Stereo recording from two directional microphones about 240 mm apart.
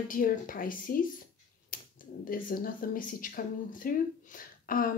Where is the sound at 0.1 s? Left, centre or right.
Left.